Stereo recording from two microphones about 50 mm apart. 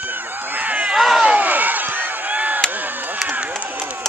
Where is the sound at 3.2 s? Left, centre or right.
Right.